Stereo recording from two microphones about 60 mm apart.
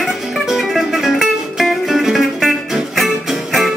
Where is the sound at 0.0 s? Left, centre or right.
Centre.